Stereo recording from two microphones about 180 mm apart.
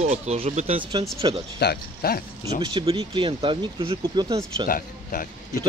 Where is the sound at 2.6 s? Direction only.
30° right (ahead or behind).